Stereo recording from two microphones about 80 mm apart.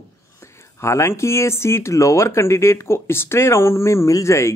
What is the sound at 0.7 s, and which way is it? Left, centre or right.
Speech, left.